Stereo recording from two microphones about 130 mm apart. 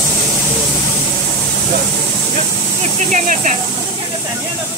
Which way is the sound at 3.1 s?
70° right (ahead or behind).